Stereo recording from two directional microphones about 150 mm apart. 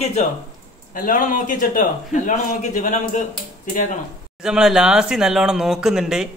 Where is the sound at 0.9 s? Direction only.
65° left (ahead or behind).